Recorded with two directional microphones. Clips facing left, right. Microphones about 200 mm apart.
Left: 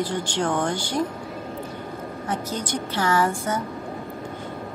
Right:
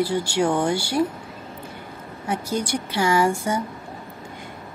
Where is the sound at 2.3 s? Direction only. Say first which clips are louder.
Right 4 dB; 10° right (ahead or behind).